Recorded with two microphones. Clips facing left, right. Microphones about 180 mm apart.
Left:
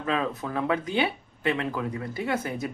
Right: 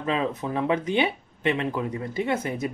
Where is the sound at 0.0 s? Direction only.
20° right (ahead or behind).